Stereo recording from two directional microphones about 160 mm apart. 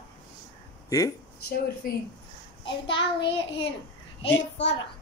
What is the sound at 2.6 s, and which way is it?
Speech, 30° left (ahead or behind).